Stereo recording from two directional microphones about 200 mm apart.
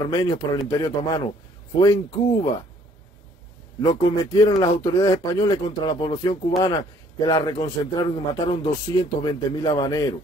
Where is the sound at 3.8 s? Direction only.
20° left (ahead or behind).